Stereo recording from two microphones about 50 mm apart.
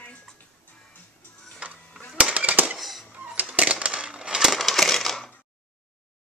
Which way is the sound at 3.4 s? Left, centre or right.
Right.